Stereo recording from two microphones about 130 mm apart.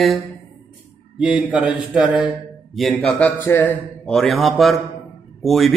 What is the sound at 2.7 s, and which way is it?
Speech, centre (ahead or behind).